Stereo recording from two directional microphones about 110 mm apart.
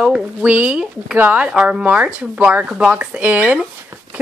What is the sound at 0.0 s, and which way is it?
Speech, 10° right (ahead or behind).